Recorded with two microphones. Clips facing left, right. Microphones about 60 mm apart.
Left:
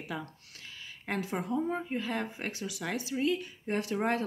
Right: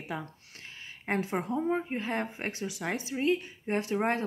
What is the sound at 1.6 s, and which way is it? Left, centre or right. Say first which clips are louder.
Speech: right 2 dB; right.